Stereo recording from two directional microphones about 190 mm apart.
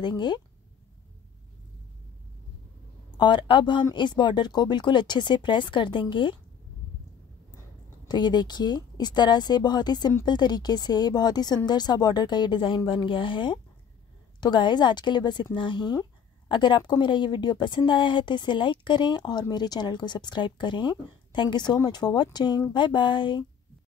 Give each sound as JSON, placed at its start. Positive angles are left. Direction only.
{"t": 0.0, "sound": "speech", "side_deg": 25}
{"t": 3.2, "sound": "speech", "side_deg": 25}
{"t": 8.1, "sound": "speech", "side_deg": 25}